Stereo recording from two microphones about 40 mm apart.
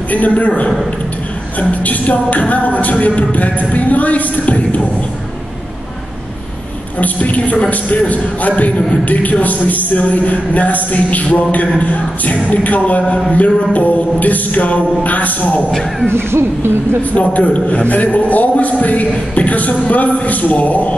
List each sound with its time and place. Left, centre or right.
0.1 s a man's voice: left
7.0 s a man's voice: left
16.2 s speech: right
17.1 s a man's voice: left